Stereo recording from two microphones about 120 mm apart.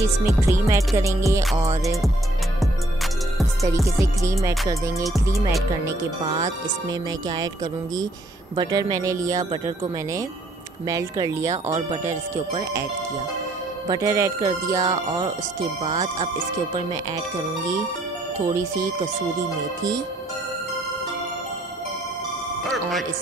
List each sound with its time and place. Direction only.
0.2 s music: 25° right (ahead or behind)
3.6 s music: 25° right (ahead or behind)
5.9 s speech: 25° right (ahead or behind)
8.9 s music: 30° right (ahead or behind)
13.8 s music: 30° right (ahead or behind)
15.8 s speech: 70° right (ahead or behind)
16.7 s speech: 35° right (ahead or behind)
18.4 s music: 25° right (ahead or behind)
22.6 s music: centre (ahead or behind)